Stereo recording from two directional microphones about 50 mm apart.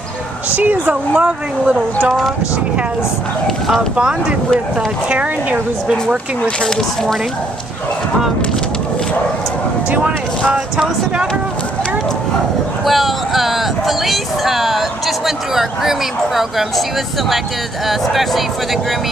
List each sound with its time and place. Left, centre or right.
0.5 s speech: right
3.9 s speech: right
9.8 s speech: right
12.8 s speech: centre
17.8 s speech: centre